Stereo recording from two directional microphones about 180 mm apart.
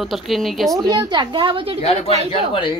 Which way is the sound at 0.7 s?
20° right (ahead or behind).